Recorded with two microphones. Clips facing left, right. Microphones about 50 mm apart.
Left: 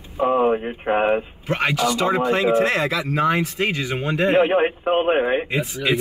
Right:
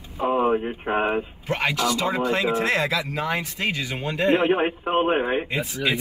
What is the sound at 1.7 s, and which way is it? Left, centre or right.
A man's voice, centre.